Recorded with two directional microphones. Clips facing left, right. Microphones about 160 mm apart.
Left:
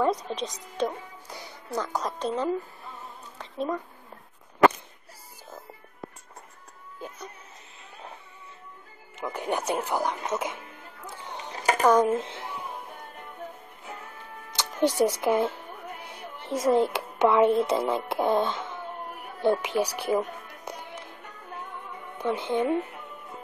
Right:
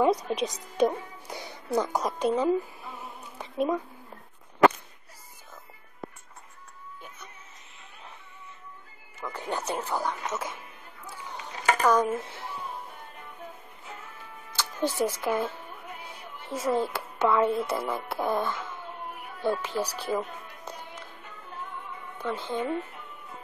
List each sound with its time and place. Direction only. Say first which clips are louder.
0.0 s a woman's voice: right 2 dB; 10° right (ahead or behind)
3.3 s a sound: right 3 dB; 10° right (ahead or behind)
9.2 s speech: left 4 dB; 15° left (ahead or behind)
11.8 s speech: left 4 dB; 20° left (ahead or behind)
14.5 s music: left 4 dB; 20° left (ahead or behind)
15.2 s speech: left 4 dB; 20° left (ahead or behind)
22.2 s speech: left 5 dB; 20° left (ahead or behind)